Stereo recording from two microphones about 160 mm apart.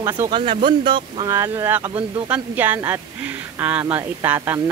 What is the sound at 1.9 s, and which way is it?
Speech, 35° right (ahead or behind).